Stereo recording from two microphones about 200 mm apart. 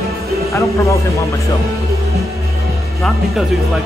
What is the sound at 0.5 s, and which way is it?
Speech, 15° left (ahead or behind).